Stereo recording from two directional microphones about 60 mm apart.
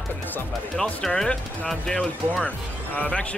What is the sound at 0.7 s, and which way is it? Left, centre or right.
Speech, centre.